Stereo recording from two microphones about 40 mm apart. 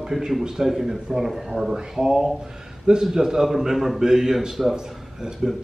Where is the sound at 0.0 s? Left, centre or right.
Centre.